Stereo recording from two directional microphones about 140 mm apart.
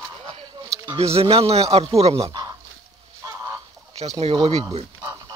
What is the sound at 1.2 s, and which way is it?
Speech, 45° right (ahead or behind).